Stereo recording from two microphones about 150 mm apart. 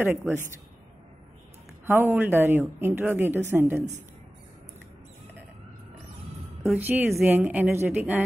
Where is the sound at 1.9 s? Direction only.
15° right (ahead or behind).